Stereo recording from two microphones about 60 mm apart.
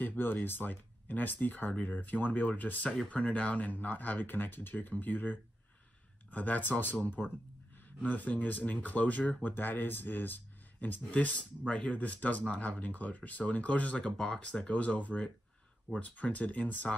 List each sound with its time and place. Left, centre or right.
0.0 s speech: left